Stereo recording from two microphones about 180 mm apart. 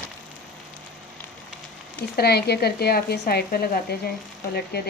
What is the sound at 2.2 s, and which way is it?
Speech, 65° left (ahead or behind).